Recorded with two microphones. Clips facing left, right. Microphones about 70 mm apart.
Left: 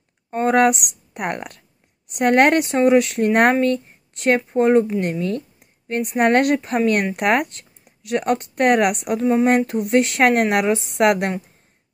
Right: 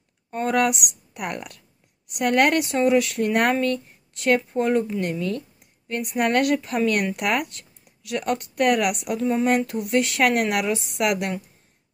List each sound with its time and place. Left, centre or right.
0.3 s speech: left